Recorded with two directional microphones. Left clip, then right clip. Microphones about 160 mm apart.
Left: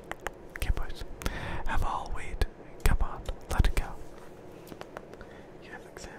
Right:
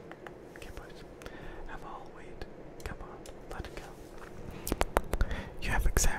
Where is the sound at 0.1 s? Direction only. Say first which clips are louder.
Left 11 dB; 50° left (ahead or behind).